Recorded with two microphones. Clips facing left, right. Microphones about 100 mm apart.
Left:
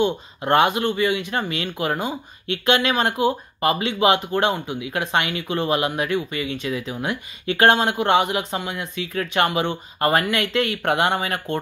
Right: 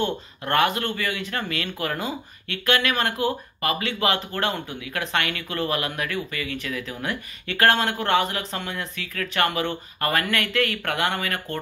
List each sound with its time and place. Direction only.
0.0 s speech: 20° left (ahead or behind)